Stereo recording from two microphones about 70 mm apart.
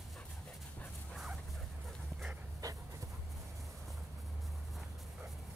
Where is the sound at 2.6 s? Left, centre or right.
Right.